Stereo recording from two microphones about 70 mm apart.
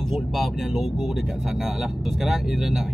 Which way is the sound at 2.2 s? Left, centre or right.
Centre.